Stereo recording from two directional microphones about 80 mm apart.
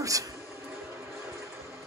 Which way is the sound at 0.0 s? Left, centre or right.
Right.